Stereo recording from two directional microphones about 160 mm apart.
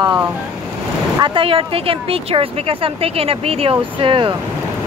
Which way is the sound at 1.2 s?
35° right (ahead or behind).